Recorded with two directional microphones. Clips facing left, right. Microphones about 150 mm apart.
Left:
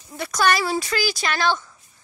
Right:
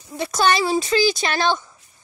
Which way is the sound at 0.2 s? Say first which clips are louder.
Right 2 dB; 25° right (ahead or behind).